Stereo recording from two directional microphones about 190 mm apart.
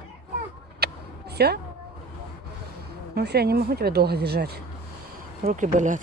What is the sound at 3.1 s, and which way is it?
Speech, 55° right (ahead or behind).